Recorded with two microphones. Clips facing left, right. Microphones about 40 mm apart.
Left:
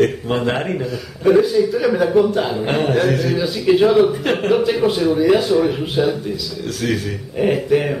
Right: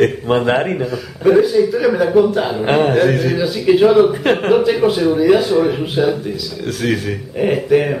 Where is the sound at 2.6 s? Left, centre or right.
Centre.